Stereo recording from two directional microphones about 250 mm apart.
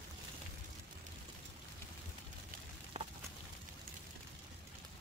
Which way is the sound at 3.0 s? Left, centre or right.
Right.